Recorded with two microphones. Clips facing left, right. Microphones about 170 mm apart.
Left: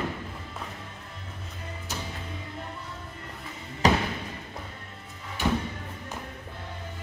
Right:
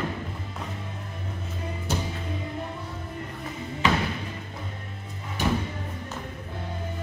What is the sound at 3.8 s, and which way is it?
Music, 40° left (ahead or behind).